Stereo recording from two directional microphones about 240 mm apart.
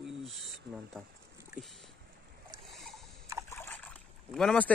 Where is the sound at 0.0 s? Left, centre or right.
Centre.